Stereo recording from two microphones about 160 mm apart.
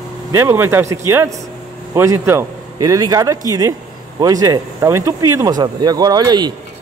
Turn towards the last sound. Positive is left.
turn(degrees=-25)  # may be behind; listen again after turning